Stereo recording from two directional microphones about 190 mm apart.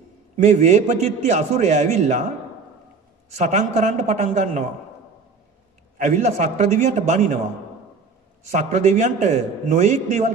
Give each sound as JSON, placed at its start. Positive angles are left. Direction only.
{"t": 0.5, "sound": "a man's voice", "side_deg": -35}
{"t": 3.4, "sound": "a man's voice", "side_deg": -40}
{"t": 5.9, "sound": "a man's voice", "side_deg": -40}
{"t": 8.5, "sound": "a man's voice", "side_deg": -40}